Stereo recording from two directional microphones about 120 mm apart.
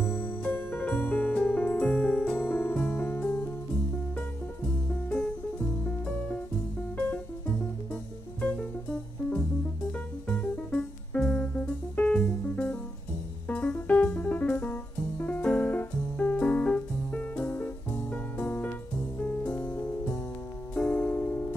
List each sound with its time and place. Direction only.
0.0 s music: 5° right (ahead or behind)
0.4 s music: 15° left (ahead or behind)
7.9 s music: 10° left (ahead or behind)
9.9 s music: 10° left (ahead or behind)